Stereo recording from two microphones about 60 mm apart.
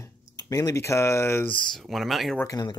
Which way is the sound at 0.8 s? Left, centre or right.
Left.